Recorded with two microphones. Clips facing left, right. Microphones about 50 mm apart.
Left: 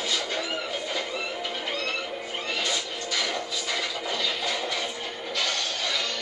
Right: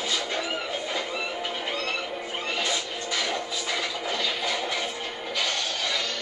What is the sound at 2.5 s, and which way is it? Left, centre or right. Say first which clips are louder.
Music: right 1 dB; right.